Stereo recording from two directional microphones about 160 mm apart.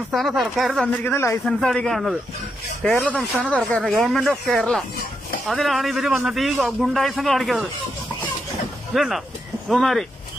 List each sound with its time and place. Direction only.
0.1 s a man's voice: centre (ahead or behind)
1.0 s a man's voice: 15° left (ahead or behind)
1.4 s a man's voice: 5° left (ahead or behind)
8.9 s a man's voice: centre (ahead or behind)